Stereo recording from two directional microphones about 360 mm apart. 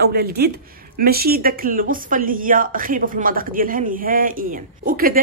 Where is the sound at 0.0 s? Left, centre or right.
Right.